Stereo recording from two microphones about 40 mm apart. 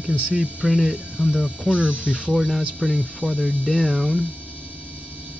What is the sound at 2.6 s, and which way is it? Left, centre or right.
Speech, centre.